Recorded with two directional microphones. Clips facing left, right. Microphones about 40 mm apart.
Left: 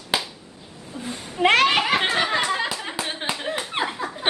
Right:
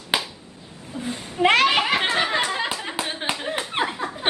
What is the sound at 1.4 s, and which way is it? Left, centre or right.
Laughter, centre.